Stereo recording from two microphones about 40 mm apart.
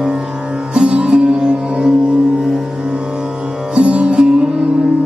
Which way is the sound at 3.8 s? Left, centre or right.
Right.